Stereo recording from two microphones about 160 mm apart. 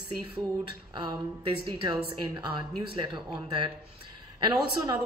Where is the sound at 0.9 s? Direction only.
30° right (ahead or behind).